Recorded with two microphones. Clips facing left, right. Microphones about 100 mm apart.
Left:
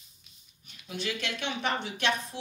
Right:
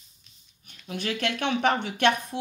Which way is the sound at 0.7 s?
50° right (ahead or behind).